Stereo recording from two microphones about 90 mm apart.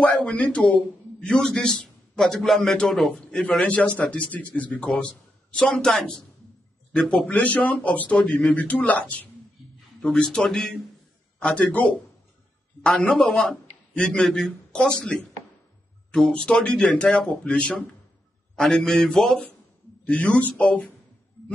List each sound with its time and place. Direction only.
0.0 s a man's voice: 15° left (ahead or behind)
20.1 s a man's voice: 15° left (ahead or behind)